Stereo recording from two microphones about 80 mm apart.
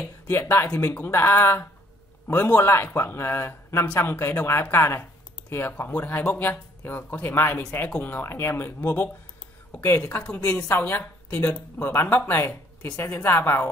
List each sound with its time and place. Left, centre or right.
0.3 s a man's voice: left